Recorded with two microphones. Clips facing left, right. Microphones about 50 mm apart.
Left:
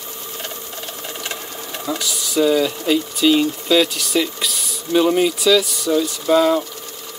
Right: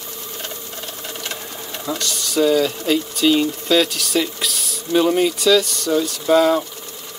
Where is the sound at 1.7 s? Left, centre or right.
Centre.